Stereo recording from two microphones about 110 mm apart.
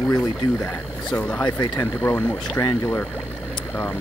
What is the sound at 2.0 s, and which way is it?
Speech, 20° left (ahead or behind).